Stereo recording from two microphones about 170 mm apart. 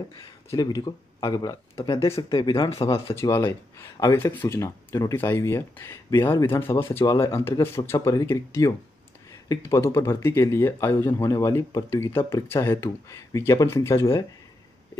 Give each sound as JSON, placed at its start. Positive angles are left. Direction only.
{"t": 0.5, "sound": "speech", "side_deg": 20}
{"t": 3.2, "sound": "speech", "side_deg": 15}